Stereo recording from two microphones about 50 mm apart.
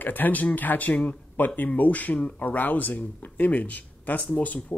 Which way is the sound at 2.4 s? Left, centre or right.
Left.